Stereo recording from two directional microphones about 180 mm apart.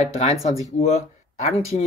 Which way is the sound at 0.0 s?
40° left (ahead or behind).